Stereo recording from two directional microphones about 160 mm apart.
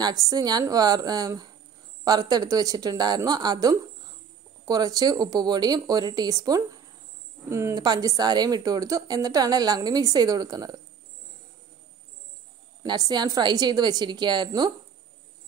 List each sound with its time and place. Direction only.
0.0 s a woman's voice: 25° right (ahead or behind)
12.8 s a woman's voice: 25° right (ahead or behind)